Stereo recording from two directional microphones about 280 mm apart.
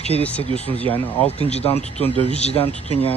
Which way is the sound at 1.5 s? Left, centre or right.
Left.